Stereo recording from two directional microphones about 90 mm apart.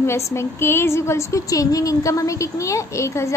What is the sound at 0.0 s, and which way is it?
A woman's voice, 30° left (ahead or behind).